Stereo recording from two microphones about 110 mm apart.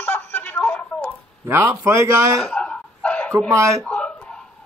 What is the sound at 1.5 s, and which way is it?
Speech, 20° right (ahead or behind).